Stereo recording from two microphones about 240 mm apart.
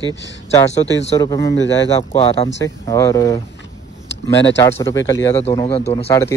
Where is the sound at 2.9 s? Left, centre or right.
Centre.